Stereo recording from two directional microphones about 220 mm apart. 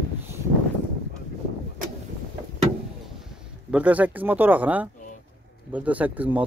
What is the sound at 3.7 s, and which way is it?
Speech, 5° right (ahead or behind).